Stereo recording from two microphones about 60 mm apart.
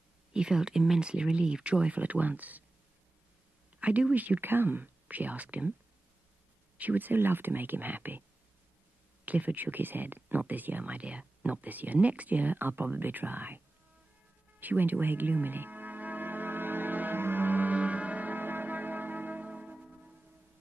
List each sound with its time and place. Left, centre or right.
0.3 s speech: centre
3.8 s speech: right
6.8 s speech: right
9.2 s speech: right
14.6 s music: right; by 20.2 s centre